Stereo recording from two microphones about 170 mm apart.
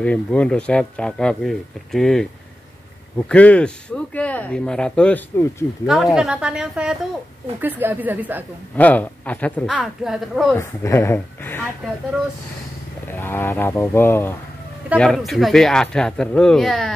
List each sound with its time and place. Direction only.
0.0 s speech: 5° left (ahead or behind)
3.3 s speech: 5° left (ahead or behind)
6.1 s speech: 5° right (ahead or behind)
8.7 s speech: 10° left (ahead or behind)
9.8 s speech: 5° right (ahead or behind)
10.6 s speech: 15° left (ahead or behind)
13.1 s speech: 15° left (ahead or behind)
15.0 s speech: 5° left (ahead or behind)